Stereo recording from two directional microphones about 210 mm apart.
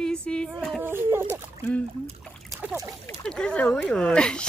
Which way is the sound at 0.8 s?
10° right (ahead or behind).